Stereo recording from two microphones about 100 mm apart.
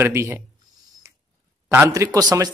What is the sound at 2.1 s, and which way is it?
Speech, 40° right (ahead or behind).